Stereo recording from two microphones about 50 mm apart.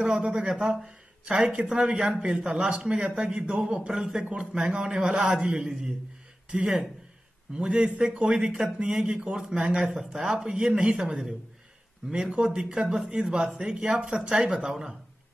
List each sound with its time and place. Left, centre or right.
0.1 s speech: centre
9.8 s speech: centre